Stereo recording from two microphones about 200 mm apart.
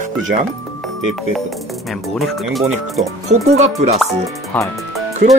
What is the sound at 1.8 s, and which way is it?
Speech, centre (ahead or behind).